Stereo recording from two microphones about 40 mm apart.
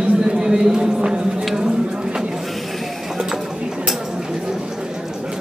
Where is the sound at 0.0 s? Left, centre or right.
Right.